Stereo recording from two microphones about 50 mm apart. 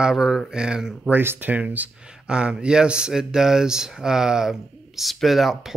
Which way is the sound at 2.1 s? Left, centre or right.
Centre.